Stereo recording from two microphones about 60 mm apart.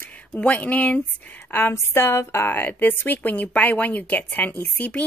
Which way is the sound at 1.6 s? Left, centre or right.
Left.